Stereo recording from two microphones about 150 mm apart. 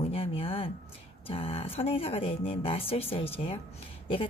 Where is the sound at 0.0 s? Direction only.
40° left (ahead or behind).